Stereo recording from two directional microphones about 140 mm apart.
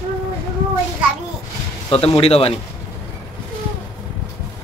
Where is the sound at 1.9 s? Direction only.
45° left (ahead or behind).